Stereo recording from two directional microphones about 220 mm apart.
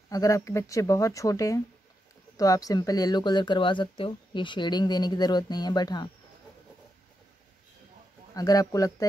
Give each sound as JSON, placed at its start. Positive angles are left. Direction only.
{"t": 0.1, "sound": "speech", "side_deg": 15}
{"t": 8.4, "sound": "speech", "side_deg": 15}